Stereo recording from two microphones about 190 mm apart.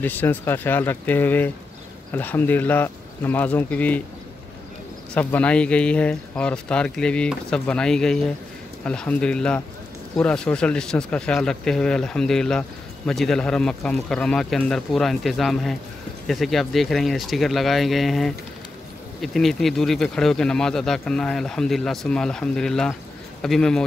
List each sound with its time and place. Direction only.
0.0 s speech: 10° left (ahead or behind)
5.1 s speech: 10° left (ahead or behind)